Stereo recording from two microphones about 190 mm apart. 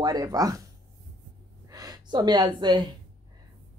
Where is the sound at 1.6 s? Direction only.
20° right (ahead or behind).